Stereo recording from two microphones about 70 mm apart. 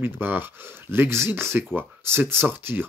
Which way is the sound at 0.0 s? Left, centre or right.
Right.